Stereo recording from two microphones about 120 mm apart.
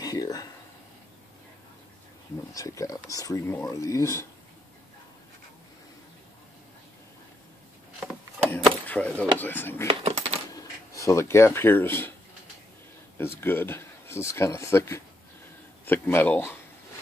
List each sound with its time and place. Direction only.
0.0 s speech: 30° left (ahead or behind)
2.5 s speech: 30° left (ahead or behind)
8.8 s speech: 10° left (ahead or behind)
9.8 s coin: 55° right (ahead or behind)
10.5 s speech: 30° left (ahead or behind)
13.2 s speech: 20° left (ahead or behind)